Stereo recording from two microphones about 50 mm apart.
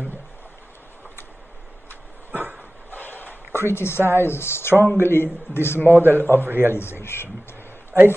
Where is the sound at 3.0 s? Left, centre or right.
Left.